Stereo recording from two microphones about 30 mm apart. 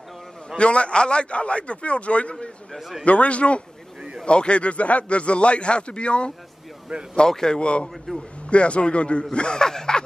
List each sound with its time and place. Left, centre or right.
0.6 s a man's voice: left
2.7 s a man's voice: centre
3.1 s a man's voice: left
6.9 s speech: right
7.2 s a man's voice: centre
7.5 s a man's voice: left
9.6 s a sound: left